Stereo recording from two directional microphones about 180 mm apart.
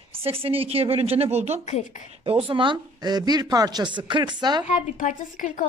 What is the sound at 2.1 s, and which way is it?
A woman's voice, 30° right (ahead or behind).